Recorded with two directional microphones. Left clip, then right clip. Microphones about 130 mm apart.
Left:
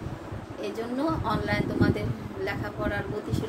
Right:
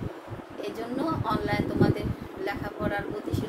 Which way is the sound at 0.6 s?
15° right (ahead or behind).